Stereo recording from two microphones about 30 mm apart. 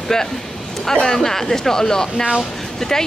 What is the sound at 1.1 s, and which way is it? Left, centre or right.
Speech, centre.